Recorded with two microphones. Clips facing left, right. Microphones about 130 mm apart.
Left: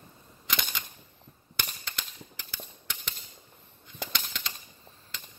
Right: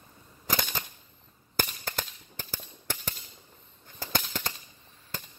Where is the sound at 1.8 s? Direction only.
50° right (ahead or behind).